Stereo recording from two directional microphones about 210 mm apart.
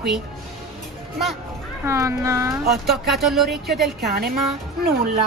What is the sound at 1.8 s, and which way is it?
Speech, 15° right (ahead or behind).